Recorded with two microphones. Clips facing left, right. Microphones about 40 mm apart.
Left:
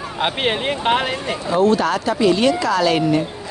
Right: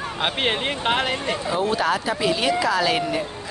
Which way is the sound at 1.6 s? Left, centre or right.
Centre.